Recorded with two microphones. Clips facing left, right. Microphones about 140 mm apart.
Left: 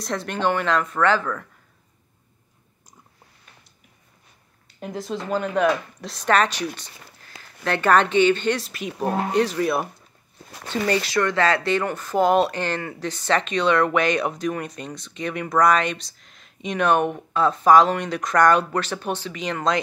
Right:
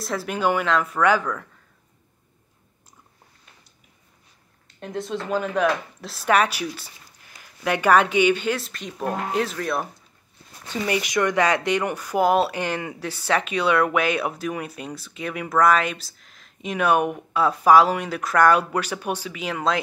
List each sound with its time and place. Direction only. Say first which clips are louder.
0.0 s speech: even; 5° right (ahead or behind)
4.6 s speech: even; 5° left (ahead or behind)
10.5 s a sound: left 3 dB; 70° left (ahead or behind)
10.9 s speech: even; 15° right (ahead or behind)